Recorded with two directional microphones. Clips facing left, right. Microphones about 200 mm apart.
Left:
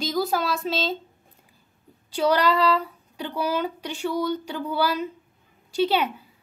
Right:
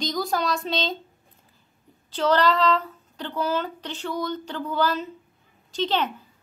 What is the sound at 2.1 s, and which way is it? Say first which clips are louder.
A woman's voice: even; 10° left (ahead or behind).